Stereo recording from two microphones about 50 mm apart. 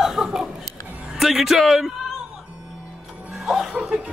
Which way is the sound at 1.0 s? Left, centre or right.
Centre.